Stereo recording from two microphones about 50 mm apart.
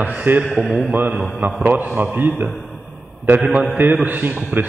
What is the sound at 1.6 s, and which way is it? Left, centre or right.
Speech, right.